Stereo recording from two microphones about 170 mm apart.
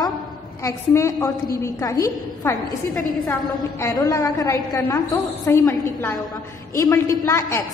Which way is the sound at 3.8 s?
15° left (ahead or behind).